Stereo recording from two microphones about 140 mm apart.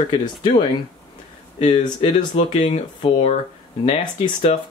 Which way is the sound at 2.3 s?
45° left (ahead or behind).